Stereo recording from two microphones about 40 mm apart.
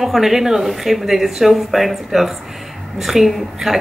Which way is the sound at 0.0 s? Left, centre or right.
Centre.